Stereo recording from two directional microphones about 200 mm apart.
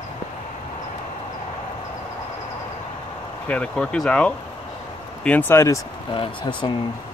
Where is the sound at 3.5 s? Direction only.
5° left (ahead or behind).